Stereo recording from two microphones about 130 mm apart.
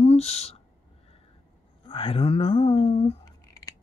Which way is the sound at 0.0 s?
55° left (ahead or behind).